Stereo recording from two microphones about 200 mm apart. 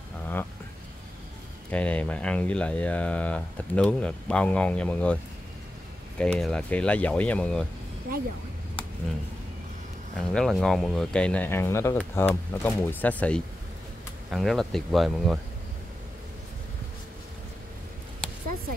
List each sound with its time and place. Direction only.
1.7 s speech: 5° left (ahead or behind)
8.1 s a sound: 45° right (ahead or behind)
10.1 s speech: centre (ahead or behind)